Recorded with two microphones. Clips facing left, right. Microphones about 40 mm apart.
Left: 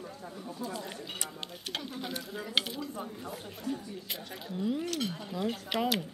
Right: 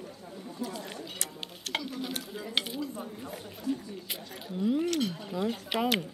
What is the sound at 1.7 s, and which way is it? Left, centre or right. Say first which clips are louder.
Speech: right 5 dB; right.